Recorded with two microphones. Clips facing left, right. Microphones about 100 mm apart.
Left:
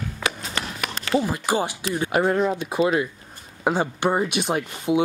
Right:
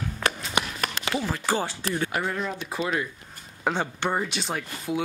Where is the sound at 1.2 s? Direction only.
15° left (ahead or behind).